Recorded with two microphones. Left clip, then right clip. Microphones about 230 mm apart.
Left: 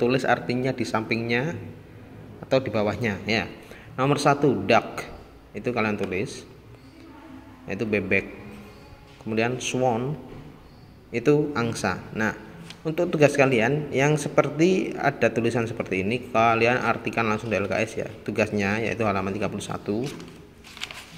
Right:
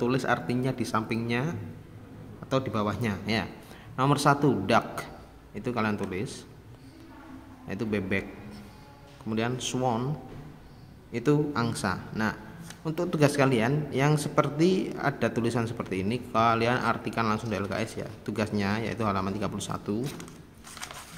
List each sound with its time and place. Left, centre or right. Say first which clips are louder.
0.0 s a man's voice: left 5 dB; centre
7.6 s speech: left 6 dB; centre
9.3 s speech: left 5 dB; centre
11.1 s speech: left 5 dB; centre